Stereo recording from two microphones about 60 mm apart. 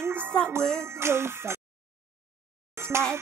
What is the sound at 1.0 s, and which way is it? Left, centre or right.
Music, right.